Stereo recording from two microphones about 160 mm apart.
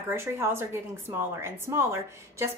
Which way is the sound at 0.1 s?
15° right (ahead or behind).